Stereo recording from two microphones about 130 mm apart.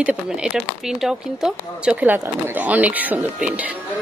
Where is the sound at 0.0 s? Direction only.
5° right (ahead or behind).